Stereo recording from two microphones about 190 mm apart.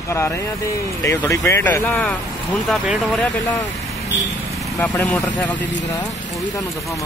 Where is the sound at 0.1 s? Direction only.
15° left (ahead or behind).